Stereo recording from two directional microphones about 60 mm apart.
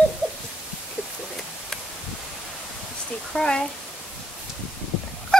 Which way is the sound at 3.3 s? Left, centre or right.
Centre.